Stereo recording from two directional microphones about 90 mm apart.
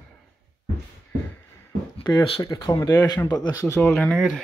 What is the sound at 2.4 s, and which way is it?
Speech, 40° left (ahead or behind).